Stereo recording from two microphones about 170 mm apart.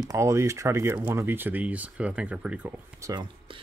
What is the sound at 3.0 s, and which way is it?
Speech, 25° right (ahead or behind).